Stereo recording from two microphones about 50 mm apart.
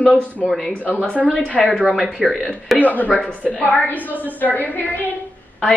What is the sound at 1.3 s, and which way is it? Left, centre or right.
Speech, left.